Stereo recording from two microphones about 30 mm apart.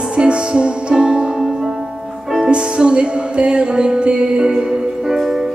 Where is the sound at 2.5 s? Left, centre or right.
Right.